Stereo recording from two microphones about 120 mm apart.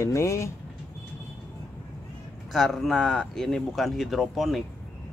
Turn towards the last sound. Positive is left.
turn(degrees=0)  # may be behind; listen again after turning